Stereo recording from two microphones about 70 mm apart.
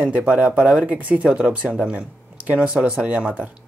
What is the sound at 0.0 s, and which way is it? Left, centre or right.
Speech, right.